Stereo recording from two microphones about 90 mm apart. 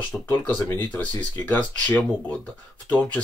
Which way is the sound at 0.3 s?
20° left (ahead or behind).